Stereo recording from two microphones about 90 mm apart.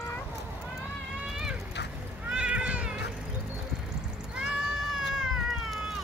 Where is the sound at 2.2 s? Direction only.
10° right (ahead or behind).